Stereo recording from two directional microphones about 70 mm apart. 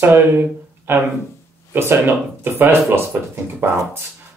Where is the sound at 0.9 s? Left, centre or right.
Right.